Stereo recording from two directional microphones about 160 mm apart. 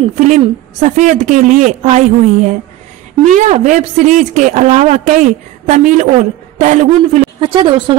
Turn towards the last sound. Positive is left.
turn(degrees=-30)  # may be behind; listen again after turning